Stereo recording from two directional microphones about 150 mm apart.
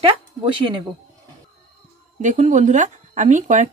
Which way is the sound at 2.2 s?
55° right (ahead or behind).